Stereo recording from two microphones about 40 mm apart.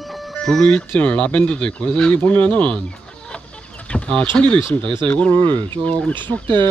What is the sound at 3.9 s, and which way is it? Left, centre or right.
Speech, left.